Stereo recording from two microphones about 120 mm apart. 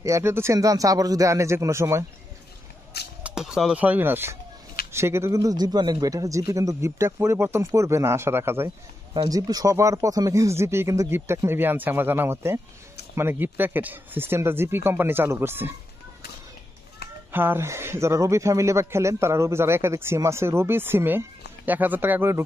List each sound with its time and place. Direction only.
0.0 s speech: 25° right (ahead or behind)
3.3 s speech: 5° right (ahead or behind)
9.1 s speech: 35° right (ahead or behind); by 15.7 s 20° right (ahead or behind)
17.3 s speech: 15° right (ahead or behind)